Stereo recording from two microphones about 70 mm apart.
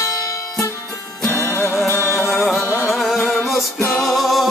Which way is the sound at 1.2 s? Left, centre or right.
Left.